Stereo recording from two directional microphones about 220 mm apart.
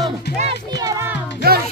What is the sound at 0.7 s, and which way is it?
Music, 15° right (ahead or behind).